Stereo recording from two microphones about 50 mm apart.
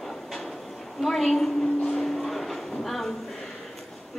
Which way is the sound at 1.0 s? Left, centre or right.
Centre.